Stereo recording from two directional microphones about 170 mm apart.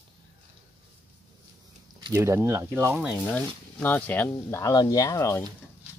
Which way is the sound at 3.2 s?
10° left (ahead or behind).